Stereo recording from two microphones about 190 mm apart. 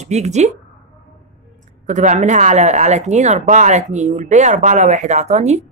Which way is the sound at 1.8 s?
40° right (ahead or behind).